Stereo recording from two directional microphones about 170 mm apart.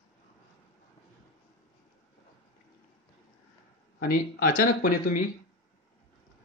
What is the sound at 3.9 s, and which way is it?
Speech, 55° left (ahead or behind).